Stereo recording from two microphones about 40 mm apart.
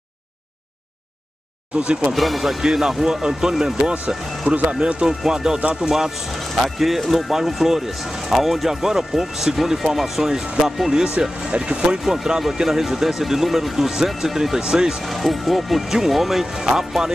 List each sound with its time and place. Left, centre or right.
1.8 s speech: right
2.1 s speech: centre
4.5 s speech: right
5.0 s speech: centre
11.2 s speech: right
12.0 s speech: centre
15.0 s speech: centre